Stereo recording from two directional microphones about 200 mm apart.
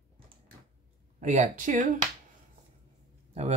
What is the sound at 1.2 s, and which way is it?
Speech, 35° right (ahead or behind).